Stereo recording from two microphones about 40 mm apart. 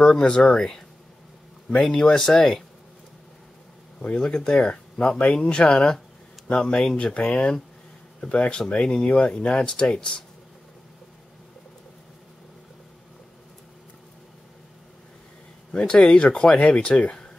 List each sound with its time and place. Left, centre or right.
0.2 s speech: centre
4.0 s speech: left
15.7 s speech: centre